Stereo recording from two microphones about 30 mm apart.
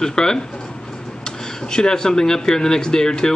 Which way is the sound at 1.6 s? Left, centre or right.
Left.